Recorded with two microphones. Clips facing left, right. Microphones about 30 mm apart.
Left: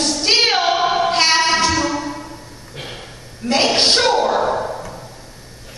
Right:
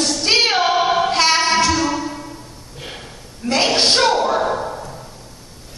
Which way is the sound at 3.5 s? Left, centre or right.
Left.